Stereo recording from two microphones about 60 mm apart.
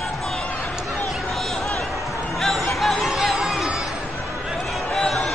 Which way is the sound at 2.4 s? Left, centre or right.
Centre.